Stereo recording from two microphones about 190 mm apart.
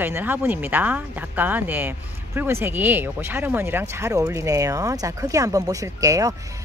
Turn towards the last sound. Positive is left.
turn(degrees=-15)  # may be behind; listen again after turning